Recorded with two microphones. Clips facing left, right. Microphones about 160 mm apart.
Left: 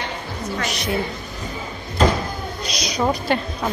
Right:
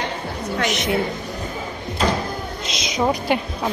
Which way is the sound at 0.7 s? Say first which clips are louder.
Right 3 dB; 20° right (ahead or behind).